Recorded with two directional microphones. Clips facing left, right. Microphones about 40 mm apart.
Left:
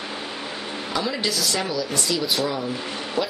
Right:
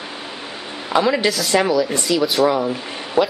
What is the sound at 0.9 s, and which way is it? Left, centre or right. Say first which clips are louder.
Speech: right 9 dB; right.